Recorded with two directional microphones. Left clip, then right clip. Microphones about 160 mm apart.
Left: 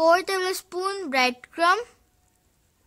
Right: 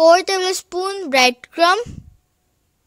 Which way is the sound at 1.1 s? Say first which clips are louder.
Right 9 dB; 35° right (ahead or behind).